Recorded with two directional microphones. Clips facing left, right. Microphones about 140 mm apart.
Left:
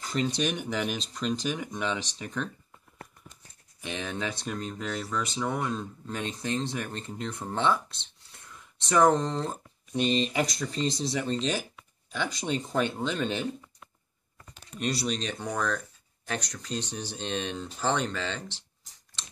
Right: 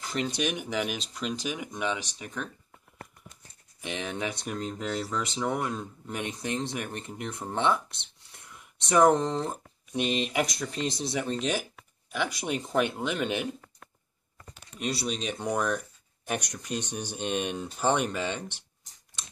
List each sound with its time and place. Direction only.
0.4 s speech: 10° right (ahead or behind)
3.8 s speech: 20° right (ahead or behind)
14.5 s speech: 5° right (ahead or behind)